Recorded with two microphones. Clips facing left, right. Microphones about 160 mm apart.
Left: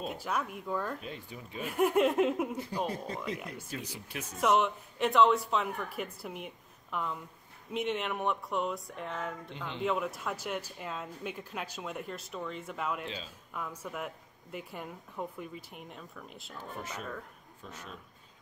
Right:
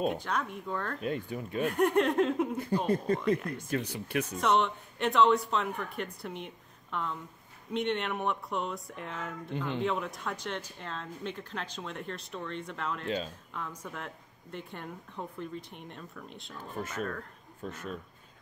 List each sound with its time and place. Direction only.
0.1 s speech: 5° left (ahead or behind)
1.0 s speech: 55° right (ahead or behind)
1.7 s speech: 5° left (ahead or behind)
3.1 s speech: 55° right (ahead or behind)
4.4 s speech: 5° left (ahead or behind)
13.0 s speech: 50° right (ahead or behind)
13.5 s speech: 10° left (ahead or behind)
17.6 s speech: 55° right (ahead or behind)